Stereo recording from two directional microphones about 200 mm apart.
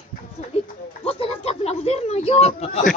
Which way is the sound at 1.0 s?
30° left (ahead or behind).